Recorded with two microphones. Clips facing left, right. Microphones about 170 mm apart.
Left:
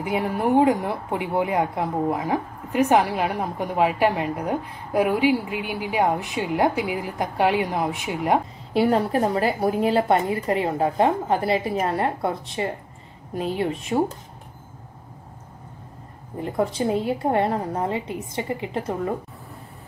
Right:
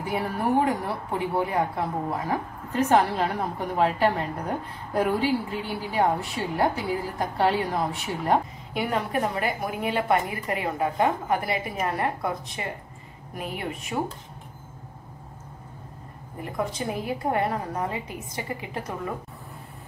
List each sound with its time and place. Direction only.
0.0 s a woman's voice: 20° left (ahead or behind)
8.7 s a woman's voice: 35° left (ahead or behind)
16.3 s a woman's voice: 30° left (ahead or behind)